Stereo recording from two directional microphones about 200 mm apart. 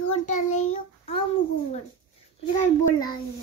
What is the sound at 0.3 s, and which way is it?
Child singing, 35° left (ahead or behind).